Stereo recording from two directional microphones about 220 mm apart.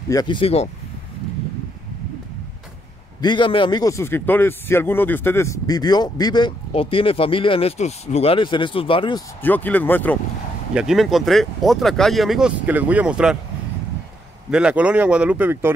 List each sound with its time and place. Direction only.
0.1 s a man's voice: 20° left (ahead or behind)
3.2 s a man's voice: 20° left (ahead or behind)
9.4 s speech: 10° left (ahead or behind)
10.7 s speech: 5° right (ahead or behind)
14.5 s speech: 5° right (ahead or behind)